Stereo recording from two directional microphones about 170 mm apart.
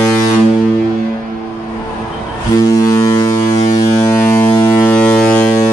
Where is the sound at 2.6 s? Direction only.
20° left (ahead or behind).